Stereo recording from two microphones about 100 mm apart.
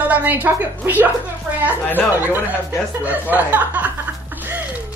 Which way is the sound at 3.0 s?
15° right (ahead or behind).